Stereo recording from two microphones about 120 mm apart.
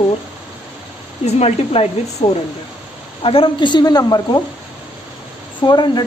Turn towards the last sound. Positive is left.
turn(degrees=35)  # may be behind; listen again after turning